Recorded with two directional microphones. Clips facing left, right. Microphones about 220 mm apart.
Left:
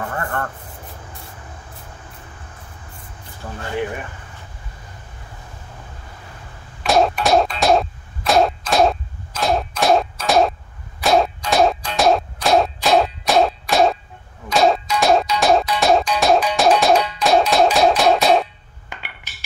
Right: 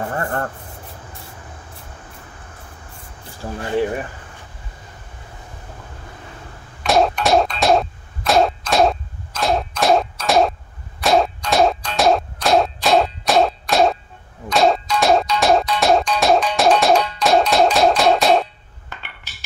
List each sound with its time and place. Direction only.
0.0 s speech: 30° right (ahead or behind)
3.4 s speech: 25° right (ahead or behind)
6.8 s a sound: centre (ahead or behind)
14.5 s music: centre (ahead or behind)
18.9 s dishes: 15° left (ahead or behind)